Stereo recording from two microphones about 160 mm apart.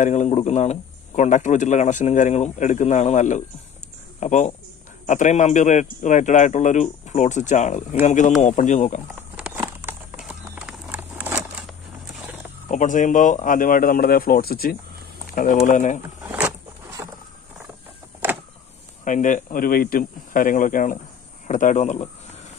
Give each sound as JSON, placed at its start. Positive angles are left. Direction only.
{"t": 0.0, "sound": "a man's voice", "side_deg": 45}
{"t": 9.4, "sound": "a sound", "side_deg": -15}
{"t": 12.6, "sound": "speech", "side_deg": 50}
{"t": 15.3, "sound": "a man's voice", "side_deg": 55}
{"t": 16.2, "sound": "a sound", "side_deg": -5}
{"t": 19.0, "sound": "a man's voice", "side_deg": 55}